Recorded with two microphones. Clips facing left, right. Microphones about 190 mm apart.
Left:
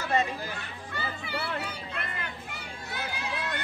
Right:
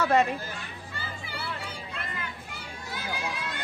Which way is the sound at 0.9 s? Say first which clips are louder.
Left 5 dB; 60° left (ahead or behind).